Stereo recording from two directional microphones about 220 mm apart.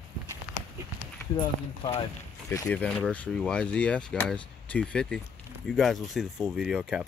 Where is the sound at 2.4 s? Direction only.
10° left (ahead or behind).